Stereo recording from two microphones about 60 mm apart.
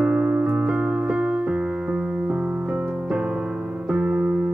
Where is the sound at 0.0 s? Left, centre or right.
Centre.